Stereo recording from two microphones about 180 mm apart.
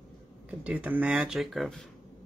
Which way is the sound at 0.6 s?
10° right (ahead or behind).